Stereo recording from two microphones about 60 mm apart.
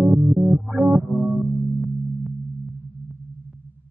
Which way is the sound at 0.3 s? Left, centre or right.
Right.